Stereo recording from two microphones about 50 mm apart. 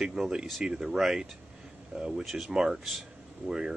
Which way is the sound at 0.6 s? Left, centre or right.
Centre.